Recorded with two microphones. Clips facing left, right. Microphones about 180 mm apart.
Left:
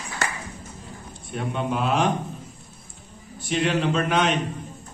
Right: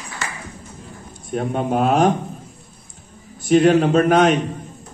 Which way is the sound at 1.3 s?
45° right (ahead or behind).